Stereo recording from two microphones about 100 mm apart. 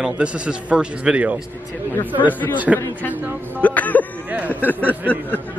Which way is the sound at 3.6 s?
15° left (ahead or behind).